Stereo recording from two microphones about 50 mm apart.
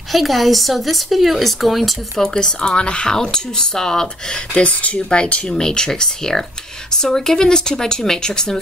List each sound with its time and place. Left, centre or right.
0.1 s speech: centre